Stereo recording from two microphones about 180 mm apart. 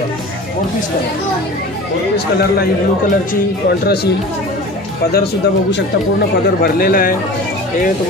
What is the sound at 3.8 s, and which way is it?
Speech, 65° left (ahead or behind).